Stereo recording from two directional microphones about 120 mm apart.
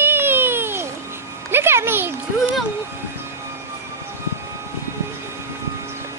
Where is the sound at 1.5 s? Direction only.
20° right (ahead or behind).